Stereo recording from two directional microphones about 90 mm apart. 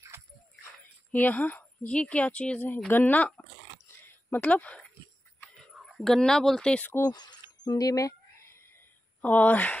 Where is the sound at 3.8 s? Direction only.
25° left (ahead or behind).